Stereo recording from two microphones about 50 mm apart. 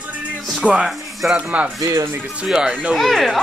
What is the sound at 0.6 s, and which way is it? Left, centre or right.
Speech, centre.